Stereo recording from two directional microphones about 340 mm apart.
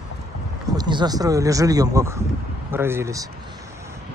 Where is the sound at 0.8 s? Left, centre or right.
Centre.